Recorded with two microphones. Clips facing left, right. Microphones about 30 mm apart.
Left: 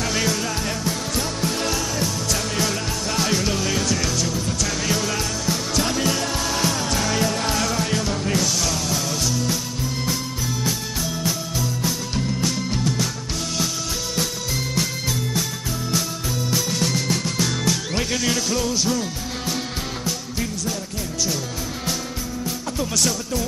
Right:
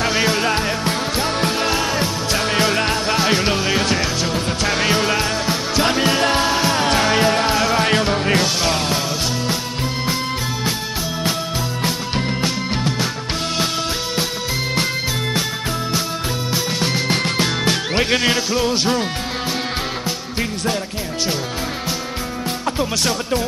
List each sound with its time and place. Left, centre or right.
0.0 s music: right
6.5 s music: right
6.8 s music: right
7.8 s music: right
11.8 s music: right
16.5 s music: right
18.7 s speech: right
22.8 s music: right